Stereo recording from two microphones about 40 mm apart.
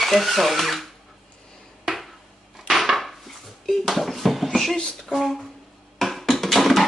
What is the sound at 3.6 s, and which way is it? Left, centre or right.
Bouncing, centre.